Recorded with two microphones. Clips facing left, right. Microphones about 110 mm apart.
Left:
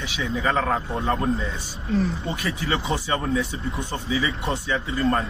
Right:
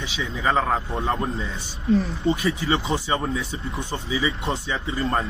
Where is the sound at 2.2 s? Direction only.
25° right (ahead or behind).